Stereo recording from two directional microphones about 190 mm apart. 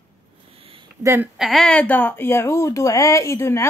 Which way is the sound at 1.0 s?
10° right (ahead or behind).